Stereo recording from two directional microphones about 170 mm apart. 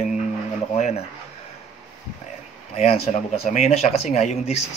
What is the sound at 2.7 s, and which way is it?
Speech, 35° left (ahead or behind).